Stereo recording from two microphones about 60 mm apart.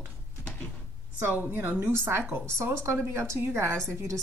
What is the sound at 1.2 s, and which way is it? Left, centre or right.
A woman's voice, right.